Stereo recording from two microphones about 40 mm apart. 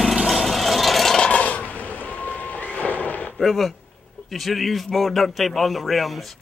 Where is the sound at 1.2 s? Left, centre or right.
Left.